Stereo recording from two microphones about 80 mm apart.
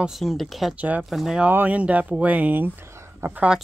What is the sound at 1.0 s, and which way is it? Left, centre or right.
Speech, centre.